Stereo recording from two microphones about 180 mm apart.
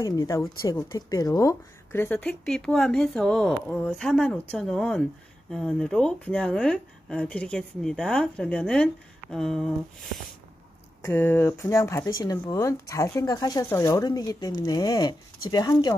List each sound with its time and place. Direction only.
0.0 s a woman's voice: 20° left (ahead or behind); by 9.7 s centre (ahead or behind)
11.0 s speech: 15° left (ahead or behind)